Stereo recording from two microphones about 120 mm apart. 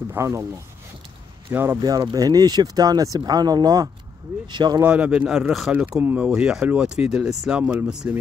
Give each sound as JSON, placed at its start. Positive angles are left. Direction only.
{"t": 0.1, "sound": "speech", "side_deg": -20}
{"t": 1.5, "sound": "speech", "side_deg": -20}
{"t": 1.8, "sound": "speech", "side_deg": -30}
{"t": 4.8, "sound": "speech", "side_deg": -10}